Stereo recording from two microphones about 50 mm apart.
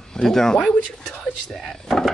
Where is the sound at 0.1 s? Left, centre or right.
Centre.